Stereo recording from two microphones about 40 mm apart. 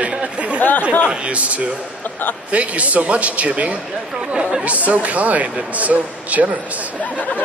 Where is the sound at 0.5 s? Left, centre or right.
Left.